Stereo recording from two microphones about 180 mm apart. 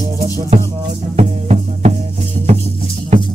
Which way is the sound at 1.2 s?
40° right (ahead or behind).